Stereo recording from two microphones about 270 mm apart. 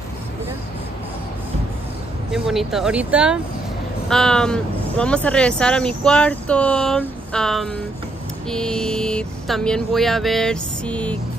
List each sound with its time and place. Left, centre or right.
2.3 s speech: centre